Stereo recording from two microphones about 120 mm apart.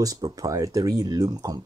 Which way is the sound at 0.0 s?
30° right (ahead or behind).